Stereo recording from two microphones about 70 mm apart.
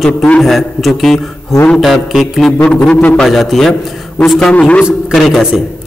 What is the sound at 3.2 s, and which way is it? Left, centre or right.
A man's voice, centre.